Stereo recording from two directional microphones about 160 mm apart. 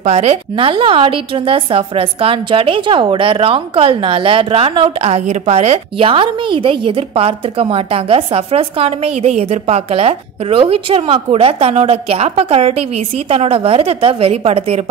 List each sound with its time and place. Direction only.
0.0 s a woman's voice: 45° right (ahead or behind)